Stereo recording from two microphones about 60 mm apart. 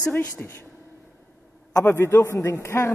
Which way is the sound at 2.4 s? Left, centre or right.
Left.